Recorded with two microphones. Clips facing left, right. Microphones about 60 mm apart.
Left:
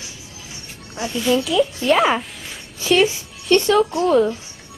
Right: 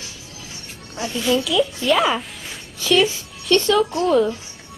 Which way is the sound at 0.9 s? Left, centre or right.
Centre.